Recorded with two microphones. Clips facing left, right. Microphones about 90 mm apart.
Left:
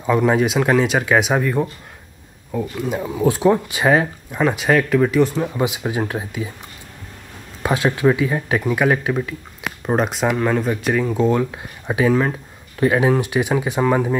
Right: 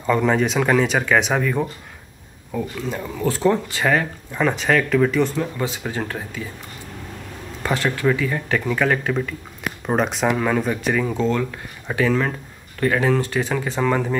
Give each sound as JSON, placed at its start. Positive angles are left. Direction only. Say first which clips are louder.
{"t": 0.0, "sound": "speech", "louder": "left 2 dB", "side_deg": 5}
{"t": 4.4, "sound": "speech", "louder": "left 2 dB", "side_deg": 5}
{"t": 7.6, "sound": "speech", "louder": "left 4 dB", "side_deg": 15}
{"t": 11.3, "sound": "speech", "louder": "left 3 dB", "side_deg": 15}